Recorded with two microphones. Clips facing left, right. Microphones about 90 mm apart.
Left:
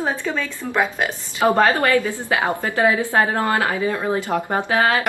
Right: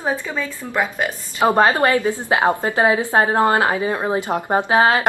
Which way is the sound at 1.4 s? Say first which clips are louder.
Right 1 dB; 20° right (ahead or behind).